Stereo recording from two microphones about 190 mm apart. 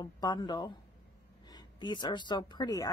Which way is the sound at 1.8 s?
25° left (ahead or behind).